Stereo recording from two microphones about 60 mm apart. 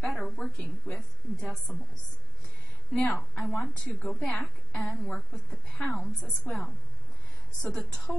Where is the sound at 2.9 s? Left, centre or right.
Centre.